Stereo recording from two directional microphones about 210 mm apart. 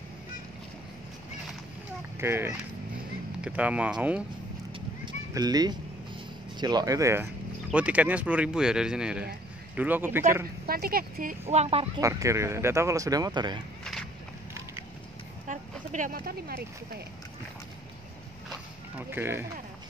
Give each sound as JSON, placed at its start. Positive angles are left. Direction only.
{"t": 2.1, "sound": "speech", "side_deg": -10}
{"t": 4.7, "sound": "horse", "side_deg": -20}
{"t": 6.6, "sound": "speech", "side_deg": -20}
{"t": 10.7, "sound": "speech", "side_deg": -45}
{"t": 11.4, "sound": "speech", "side_deg": -30}
{"t": 12.0, "sound": "speech", "side_deg": -15}
{"t": 15.4, "sound": "a sound", "side_deg": -35}
{"t": 18.5, "sound": "a sound", "side_deg": -10}